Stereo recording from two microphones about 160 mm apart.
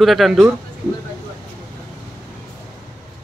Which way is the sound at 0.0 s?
Centre (ahead or behind).